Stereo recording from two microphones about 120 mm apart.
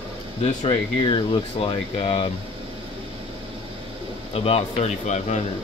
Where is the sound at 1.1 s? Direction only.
50° left (ahead or behind).